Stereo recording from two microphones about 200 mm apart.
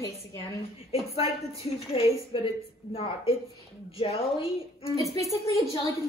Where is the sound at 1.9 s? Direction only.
25° left (ahead or behind).